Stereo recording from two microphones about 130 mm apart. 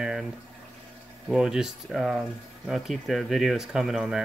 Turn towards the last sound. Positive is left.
turn(degrees=-5)  # may be behind; listen again after turning